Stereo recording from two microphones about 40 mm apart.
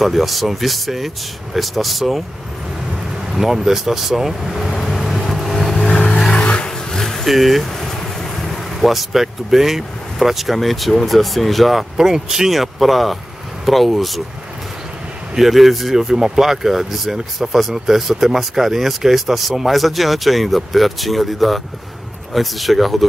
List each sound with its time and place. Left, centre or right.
0.0 s speech: centre
3.3 s speech: centre
4.4 s vehicle: centre
5.9 s vehicle: left
6.3 s a sound: left
6.9 s vehicle: centre
8.2 s speech: centre
12.0 s speech: centre
15.3 s speech: centre